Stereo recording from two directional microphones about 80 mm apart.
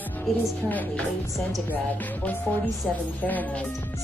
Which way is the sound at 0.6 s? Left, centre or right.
Left.